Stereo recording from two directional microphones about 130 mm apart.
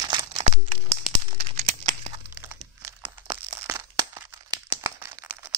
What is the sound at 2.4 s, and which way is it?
Crumpling, 20° right (ahead or behind).